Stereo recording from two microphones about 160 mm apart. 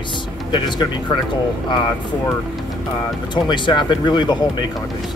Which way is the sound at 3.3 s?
30° left (ahead or behind).